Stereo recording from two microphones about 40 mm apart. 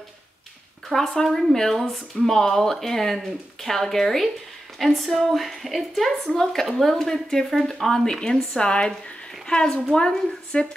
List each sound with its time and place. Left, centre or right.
0.9 s a woman's voice: centre